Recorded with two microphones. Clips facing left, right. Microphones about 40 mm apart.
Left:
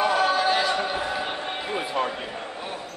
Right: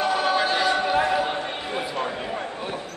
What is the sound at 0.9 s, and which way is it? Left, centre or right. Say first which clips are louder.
Basketball bounce: right 7 dB; right.